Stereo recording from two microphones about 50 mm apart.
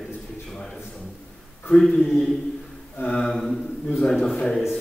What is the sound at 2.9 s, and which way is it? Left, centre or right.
Speech, left.